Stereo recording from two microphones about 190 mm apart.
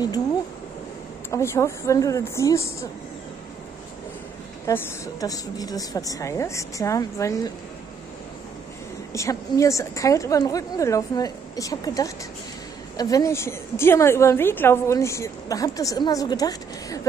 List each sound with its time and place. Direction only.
1.3 s a woman's voice: 15° left (ahead or behind)
4.6 s a woman's voice: 15° left (ahead or behind)
9.1 s a woman's voice: 15° left (ahead or behind)